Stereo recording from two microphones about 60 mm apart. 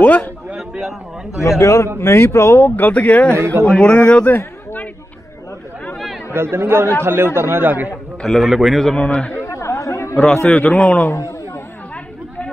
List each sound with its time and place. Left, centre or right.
0.0 s a man's voice: left
0.6 s a sound: centre
1.6 s a man's voice: left
2.0 s speech: left
2.7 s a man's voice: left
6.3 s speech: right
8.2 s a man's voice: centre
8.5 s a man's voice: centre
8.8 s a man's voice: centre
9.4 s chatter: left
10.1 s a man's voice: centre
10.4 s a man's voice: left
11.1 s a sound: left